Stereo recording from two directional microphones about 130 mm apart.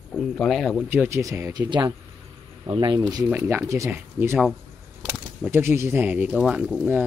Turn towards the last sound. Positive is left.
turn(degrees=-5)  # may be behind; listen again after turning